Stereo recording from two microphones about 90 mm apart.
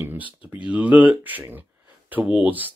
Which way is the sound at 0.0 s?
20° right (ahead or behind).